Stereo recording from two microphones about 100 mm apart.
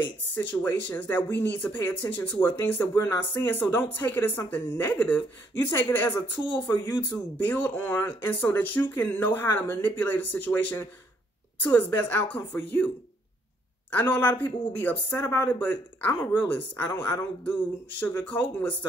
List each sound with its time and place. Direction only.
0.5 s speech: 15° left (ahead or behind)
13.9 s speech: 15° left (ahead or behind)